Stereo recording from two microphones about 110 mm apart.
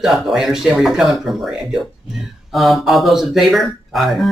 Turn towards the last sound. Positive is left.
turn(degrees=0)  # may be behind; listen again after turning